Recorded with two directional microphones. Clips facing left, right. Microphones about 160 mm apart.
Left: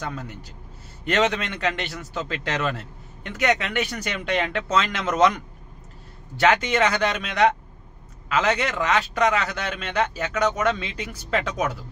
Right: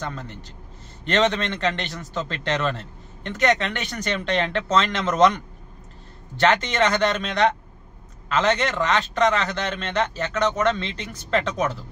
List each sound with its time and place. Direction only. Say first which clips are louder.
0.0 s a man's voice: even; 10° left (ahead or behind)